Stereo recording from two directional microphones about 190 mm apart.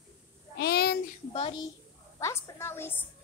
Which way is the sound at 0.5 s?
55° left (ahead or behind).